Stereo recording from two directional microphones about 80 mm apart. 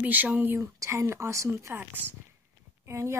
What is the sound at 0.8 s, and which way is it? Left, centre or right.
Speech, right.